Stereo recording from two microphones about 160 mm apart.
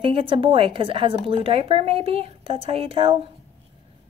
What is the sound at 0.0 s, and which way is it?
A woman's voice, 35° right (ahead or behind).